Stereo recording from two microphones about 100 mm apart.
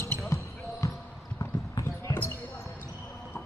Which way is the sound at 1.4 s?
30° left (ahead or behind).